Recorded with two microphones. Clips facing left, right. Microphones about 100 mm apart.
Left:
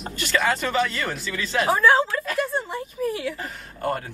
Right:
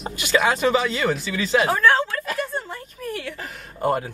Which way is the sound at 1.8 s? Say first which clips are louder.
Left 4 dB; 10° left (ahead or behind).